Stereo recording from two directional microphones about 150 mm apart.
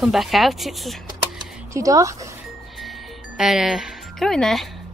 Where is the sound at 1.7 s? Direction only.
20° right (ahead or behind).